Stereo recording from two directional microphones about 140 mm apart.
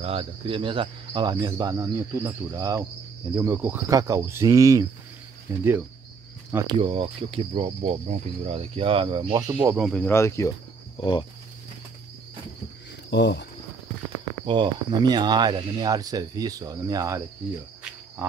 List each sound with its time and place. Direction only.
0.0 s speech: 45° right (ahead or behind); by 5.9 s 15° right (ahead or behind)
6.7 s speech: 45° right (ahead or behind)
9.4 s speech: 25° right (ahead or behind)
9.8 s speech: centre (ahead or behind)
10.0 s speech: 20° left (ahead or behind)
11.0 s speech: 35° left (ahead or behind)
14.4 s speech: 35° right (ahead or behind)